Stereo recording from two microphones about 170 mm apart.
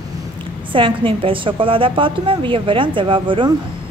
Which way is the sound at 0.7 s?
30° right (ahead or behind).